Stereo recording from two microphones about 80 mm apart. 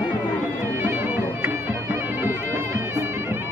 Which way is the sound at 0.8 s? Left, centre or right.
Right.